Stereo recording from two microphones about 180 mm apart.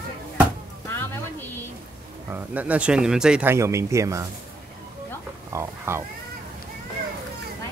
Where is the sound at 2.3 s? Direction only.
10° right (ahead or behind).